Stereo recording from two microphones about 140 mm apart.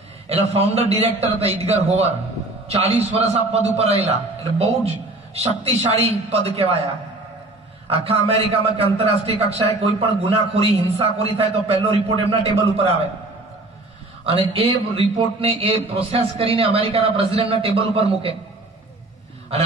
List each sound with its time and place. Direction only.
0.3 s a man's voice: 50° right (ahead or behind)
7.9 s a man's voice: 45° right (ahead or behind)
14.2 s a man's voice: 45° right (ahead or behind)